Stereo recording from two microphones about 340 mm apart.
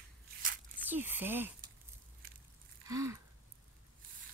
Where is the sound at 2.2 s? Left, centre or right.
Right.